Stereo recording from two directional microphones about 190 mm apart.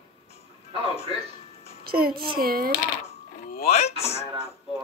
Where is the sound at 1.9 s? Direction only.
50° right (ahead or behind).